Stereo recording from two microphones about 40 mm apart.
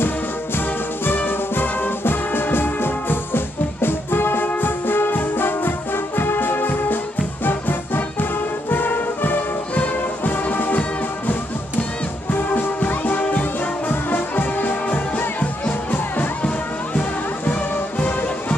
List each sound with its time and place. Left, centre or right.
0.6 s music: left
4.6 s brass instrument: left
7.4 s music: left
17.5 s music: left